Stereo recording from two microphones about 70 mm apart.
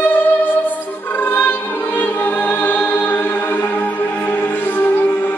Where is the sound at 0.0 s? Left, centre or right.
Left.